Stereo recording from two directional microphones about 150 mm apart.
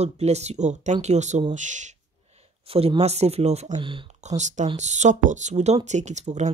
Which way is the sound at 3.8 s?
35° right (ahead or behind).